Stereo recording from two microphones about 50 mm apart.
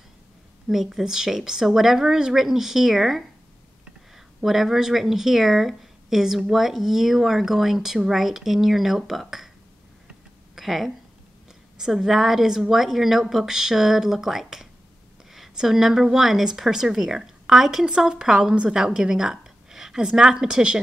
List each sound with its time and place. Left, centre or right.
0.7 s a woman's voice: centre
4.4 s speech: centre
10.5 s a sound: centre
11.8 s a woman's voice: centre; by 18.8 s right
18.8 s a woman's voice: centre